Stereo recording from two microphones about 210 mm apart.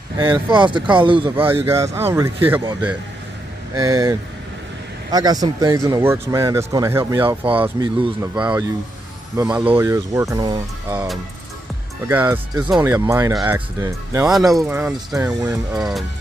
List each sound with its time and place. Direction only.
0.2 s speech: 25° right (ahead or behind)
1.3 s speech: 10° right (ahead or behind)
3.7 s speech: 15° right (ahead or behind)
10.9 s speech: 5° right (ahead or behind)
14.2 s speech: centre (ahead or behind)